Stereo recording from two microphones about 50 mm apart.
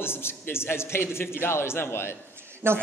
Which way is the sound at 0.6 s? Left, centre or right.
Left.